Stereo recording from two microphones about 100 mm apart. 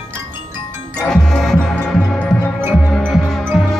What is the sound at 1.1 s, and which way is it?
Music, 5° left (ahead or behind).